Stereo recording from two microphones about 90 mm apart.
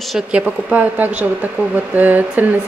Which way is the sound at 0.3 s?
10° right (ahead or behind).